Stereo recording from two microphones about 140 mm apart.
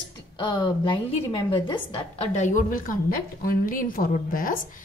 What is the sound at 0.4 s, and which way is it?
A woman's voice, 35° left (ahead or behind).